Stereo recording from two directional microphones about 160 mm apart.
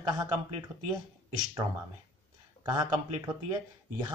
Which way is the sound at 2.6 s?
20° right (ahead or behind).